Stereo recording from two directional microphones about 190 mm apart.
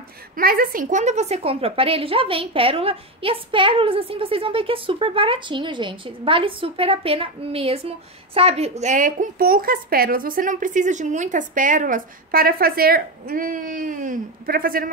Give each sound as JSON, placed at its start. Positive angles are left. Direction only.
{"t": 0.4, "sound": "a woman's voice", "side_deg": -50}